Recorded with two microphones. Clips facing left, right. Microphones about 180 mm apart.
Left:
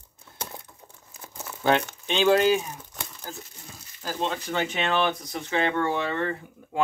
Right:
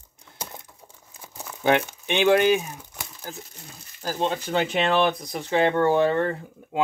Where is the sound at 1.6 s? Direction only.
15° right (ahead or behind).